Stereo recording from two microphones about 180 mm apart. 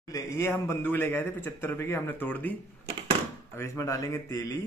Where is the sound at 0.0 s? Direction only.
20° left (ahead or behind).